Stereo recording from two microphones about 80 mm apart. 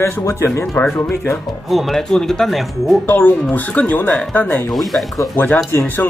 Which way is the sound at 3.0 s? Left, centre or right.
Left.